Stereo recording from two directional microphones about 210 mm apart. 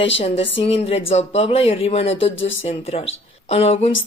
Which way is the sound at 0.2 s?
25° left (ahead or behind).